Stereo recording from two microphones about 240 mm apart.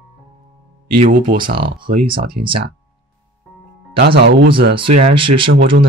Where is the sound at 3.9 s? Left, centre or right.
Right.